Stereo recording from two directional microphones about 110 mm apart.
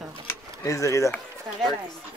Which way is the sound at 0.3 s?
30° left (ahead or behind).